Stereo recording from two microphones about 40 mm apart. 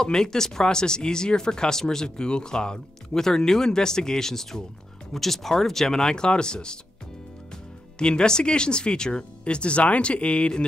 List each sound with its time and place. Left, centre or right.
0.0 s speech: centre
8.0 s speech: left